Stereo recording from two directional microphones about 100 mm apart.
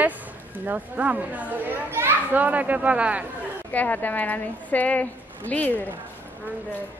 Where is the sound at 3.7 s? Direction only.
15° left (ahead or behind).